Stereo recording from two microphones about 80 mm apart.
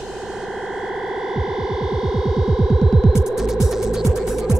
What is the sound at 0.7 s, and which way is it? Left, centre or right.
Music, centre.